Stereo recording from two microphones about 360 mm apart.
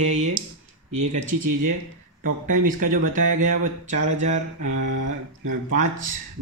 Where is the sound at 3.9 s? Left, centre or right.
Centre.